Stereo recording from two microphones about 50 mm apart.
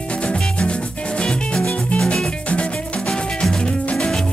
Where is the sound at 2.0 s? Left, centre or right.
Centre.